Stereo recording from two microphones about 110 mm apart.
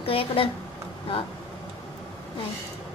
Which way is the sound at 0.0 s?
60° left (ahead or behind).